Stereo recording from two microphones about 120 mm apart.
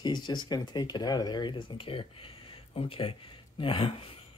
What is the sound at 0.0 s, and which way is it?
Speech, 40° left (ahead or behind).